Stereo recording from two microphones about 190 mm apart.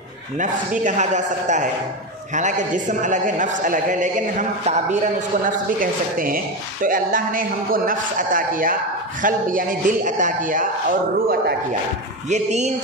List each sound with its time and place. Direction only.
0.4 s a man's voice: 40° right (ahead or behind)
12.3 s a man's voice: 35° right (ahead or behind)